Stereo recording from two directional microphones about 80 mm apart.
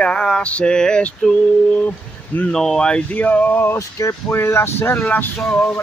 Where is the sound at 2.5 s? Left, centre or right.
Centre; by 3.8 s left.